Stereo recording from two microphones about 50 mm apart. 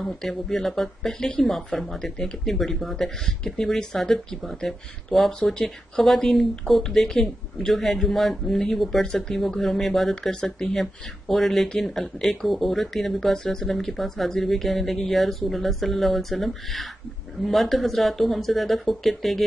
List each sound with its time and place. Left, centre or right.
0.0 s speech: centre
5.4 s speech: centre